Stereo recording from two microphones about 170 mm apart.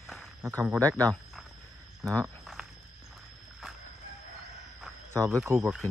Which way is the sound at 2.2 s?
Centre (ahead or behind).